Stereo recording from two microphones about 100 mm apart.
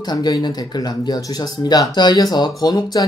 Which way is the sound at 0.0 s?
45° left (ahead or behind).